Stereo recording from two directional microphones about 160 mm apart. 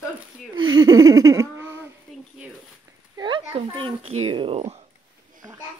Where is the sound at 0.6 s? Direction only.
25° right (ahead or behind).